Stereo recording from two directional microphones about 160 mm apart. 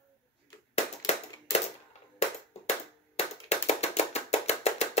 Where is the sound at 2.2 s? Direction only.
40° left (ahead or behind).